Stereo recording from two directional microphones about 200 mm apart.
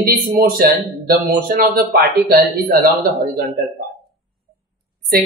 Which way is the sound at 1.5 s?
45° right (ahead or behind).